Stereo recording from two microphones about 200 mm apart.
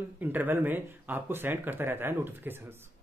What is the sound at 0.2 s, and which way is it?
Speech, 10° right (ahead or behind).